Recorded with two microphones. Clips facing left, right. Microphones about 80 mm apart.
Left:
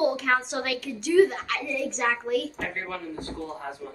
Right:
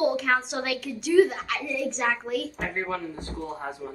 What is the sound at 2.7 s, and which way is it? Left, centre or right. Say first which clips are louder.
A man's voice: right 3 dB; right.